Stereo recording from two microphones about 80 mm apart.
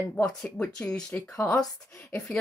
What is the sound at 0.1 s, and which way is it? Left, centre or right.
Speech, centre.